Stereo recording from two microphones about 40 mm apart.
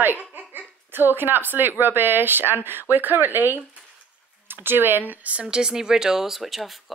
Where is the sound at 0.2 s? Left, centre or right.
Right.